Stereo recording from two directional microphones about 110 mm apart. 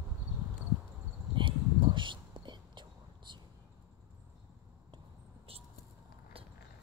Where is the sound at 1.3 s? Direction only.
45° right (ahead or behind).